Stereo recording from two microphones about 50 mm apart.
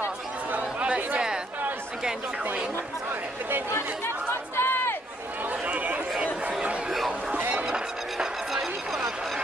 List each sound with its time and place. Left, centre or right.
0.5 s chatter: right
3.7 s chatter: left
5.5 s run: right
7.5 s a sound: centre